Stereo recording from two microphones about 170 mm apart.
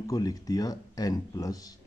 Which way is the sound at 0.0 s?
20° left (ahead or behind).